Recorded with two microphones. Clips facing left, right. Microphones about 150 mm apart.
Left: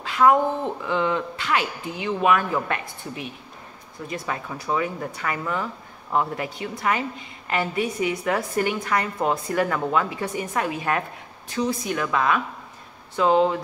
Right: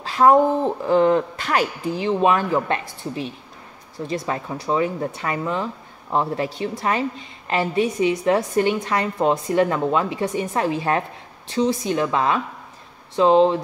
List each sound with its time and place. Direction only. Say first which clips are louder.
0.0 s a woman's voice: right 3 dB; 35° right (ahead or behind)